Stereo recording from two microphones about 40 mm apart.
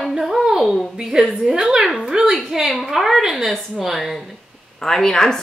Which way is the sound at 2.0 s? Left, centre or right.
Right.